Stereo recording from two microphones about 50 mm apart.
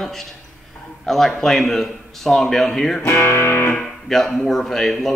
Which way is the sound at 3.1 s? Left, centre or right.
Left.